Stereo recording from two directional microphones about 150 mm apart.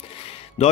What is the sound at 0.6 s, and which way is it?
Speech, 50° left (ahead or behind).